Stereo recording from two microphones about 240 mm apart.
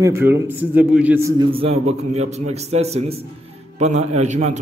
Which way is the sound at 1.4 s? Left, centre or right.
Right.